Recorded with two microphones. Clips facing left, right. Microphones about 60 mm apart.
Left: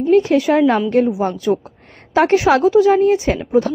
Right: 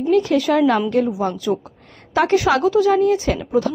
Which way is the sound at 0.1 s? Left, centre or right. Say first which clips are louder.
Left 3 dB; left.